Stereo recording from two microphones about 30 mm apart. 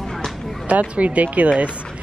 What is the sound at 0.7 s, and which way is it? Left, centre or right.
Speech, right.